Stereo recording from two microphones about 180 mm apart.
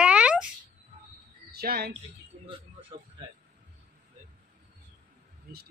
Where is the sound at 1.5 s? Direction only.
60° right (ahead or behind).